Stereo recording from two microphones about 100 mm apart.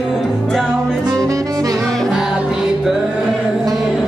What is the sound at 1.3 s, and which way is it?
Saxophone, 35° right (ahead or behind).